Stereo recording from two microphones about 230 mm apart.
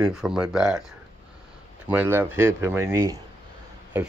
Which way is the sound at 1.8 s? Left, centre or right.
Centre.